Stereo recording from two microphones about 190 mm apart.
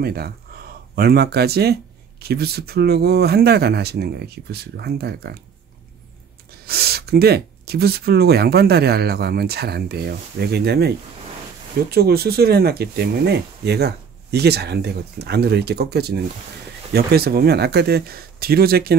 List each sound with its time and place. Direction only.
0.0 s speech: 55° right (ahead or behind)
0.5 s a sound: 50° right (ahead or behind)
0.9 s speech: 55° right (ahead or behind)
6.6 s speech: 55° right (ahead or behind)
11.9 s speech: 55° right (ahead or behind)